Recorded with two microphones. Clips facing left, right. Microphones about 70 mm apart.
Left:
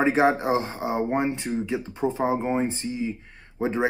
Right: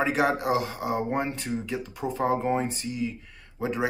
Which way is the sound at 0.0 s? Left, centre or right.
Left.